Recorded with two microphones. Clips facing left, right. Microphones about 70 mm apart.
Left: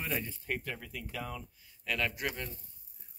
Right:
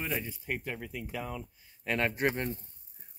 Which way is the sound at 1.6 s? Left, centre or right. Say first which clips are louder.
Right 4 dB; right.